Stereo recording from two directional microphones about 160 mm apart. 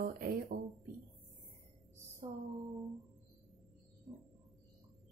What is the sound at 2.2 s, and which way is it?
Music, 40° right (ahead or behind).